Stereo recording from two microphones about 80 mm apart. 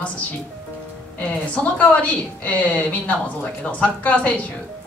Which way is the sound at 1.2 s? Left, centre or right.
Centre.